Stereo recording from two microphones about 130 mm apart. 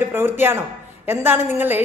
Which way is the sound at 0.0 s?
15° right (ahead or behind).